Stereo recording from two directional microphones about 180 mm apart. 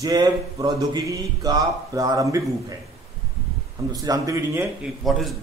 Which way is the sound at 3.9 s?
20° right (ahead or behind).